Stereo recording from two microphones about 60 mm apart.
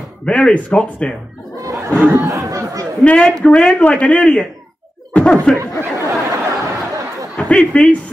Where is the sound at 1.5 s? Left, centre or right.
Right.